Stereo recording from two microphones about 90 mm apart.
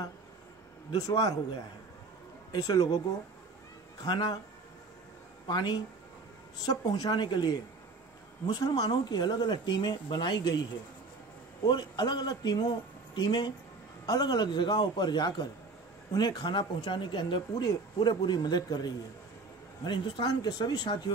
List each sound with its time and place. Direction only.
1.0 s speech: 40° left (ahead or behind)
2.5 s a man's voice: 40° left (ahead or behind)
4.0 s a man's voice: 50° left (ahead or behind)
5.5 s a man's voice: 50° left (ahead or behind)
11.6 s a man's voice: 55° left (ahead or behind)